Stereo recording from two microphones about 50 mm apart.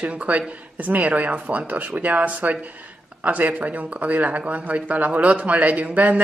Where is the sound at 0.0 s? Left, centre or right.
Right.